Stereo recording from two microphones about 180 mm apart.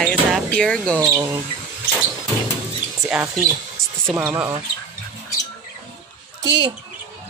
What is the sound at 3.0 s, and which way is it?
Speech, 5° right (ahead or behind).